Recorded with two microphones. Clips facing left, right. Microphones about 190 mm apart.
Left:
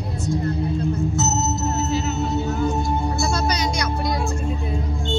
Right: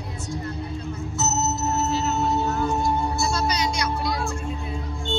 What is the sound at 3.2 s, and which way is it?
Music, 45° left (ahead or behind).